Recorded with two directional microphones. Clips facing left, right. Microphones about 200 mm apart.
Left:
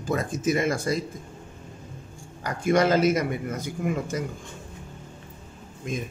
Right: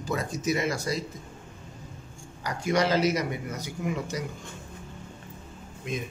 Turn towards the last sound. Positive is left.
turn(degrees=45)  # may be behind; listen again after turning